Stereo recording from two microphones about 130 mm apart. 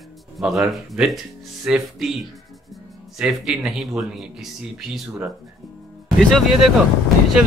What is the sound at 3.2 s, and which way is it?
Speech, 5° right (ahead or behind).